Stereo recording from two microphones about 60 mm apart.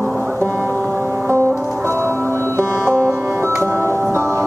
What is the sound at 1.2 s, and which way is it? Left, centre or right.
Music, right.